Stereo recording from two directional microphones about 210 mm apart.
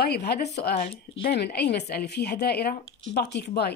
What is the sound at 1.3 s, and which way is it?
Speech, 50° left (ahead or behind).